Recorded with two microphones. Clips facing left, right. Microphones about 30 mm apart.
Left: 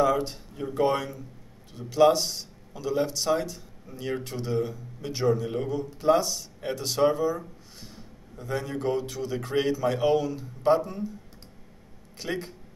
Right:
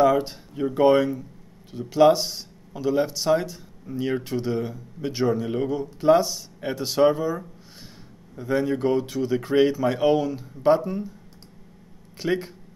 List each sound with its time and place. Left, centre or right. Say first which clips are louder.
0.0 s speech: right 4 dB; centre
12.2 s speech: right 7 dB; centre